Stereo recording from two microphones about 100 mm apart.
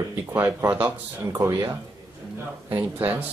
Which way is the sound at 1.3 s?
35° right (ahead or behind).